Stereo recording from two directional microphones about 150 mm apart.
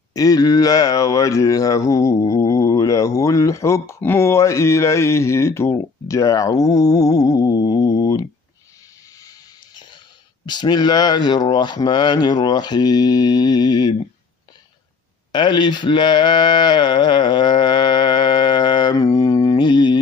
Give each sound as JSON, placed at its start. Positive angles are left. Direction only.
{"t": 0.1, "sound": "speech", "side_deg": 25}
{"t": 10.4, "sound": "speech", "side_deg": 30}
{"t": 15.3, "sound": "speech", "side_deg": 30}